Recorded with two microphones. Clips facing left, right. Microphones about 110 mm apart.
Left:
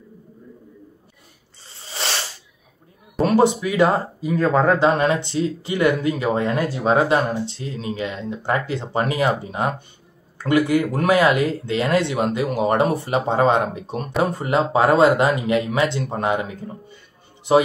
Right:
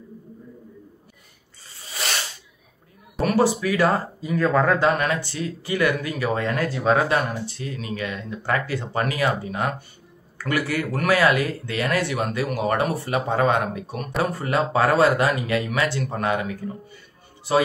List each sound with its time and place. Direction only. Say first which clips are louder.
1.7 s ratchet: left 2 dB; 30° left (ahead or behind)
3.2 s speech: left 3 dB; 25° left (ahead or behind)